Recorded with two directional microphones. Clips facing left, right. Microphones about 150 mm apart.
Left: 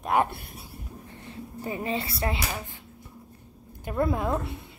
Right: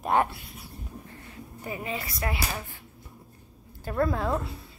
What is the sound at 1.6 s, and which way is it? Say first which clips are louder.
Speech: left 4 dB; 30° left (ahead or behind).